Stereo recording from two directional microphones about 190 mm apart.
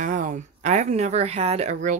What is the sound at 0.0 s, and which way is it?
Speech, 40° right (ahead or behind).